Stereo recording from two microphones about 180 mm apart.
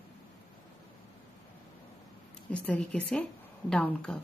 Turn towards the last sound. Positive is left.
turn(degrees=5)  # may be behind; listen again after turning